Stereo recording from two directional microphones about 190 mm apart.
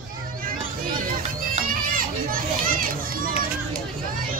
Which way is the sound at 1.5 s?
50° right (ahead or behind).